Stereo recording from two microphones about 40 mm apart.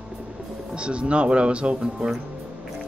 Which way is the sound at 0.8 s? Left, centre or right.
Right.